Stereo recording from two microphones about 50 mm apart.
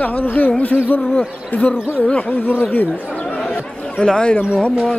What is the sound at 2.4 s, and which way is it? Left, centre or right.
Speech, left.